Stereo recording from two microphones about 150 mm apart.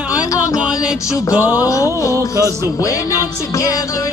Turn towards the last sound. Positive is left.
turn(degrees=20)  # may be behind; listen again after turning